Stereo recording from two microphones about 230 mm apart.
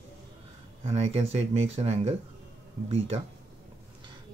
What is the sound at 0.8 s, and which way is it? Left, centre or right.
Speech, right.